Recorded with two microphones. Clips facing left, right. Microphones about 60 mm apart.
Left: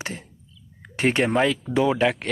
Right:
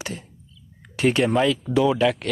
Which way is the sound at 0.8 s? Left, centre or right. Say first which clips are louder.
Right 1 dB; left.